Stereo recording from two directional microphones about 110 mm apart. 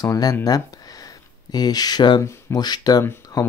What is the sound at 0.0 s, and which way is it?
Speech, 30° left (ahead or behind).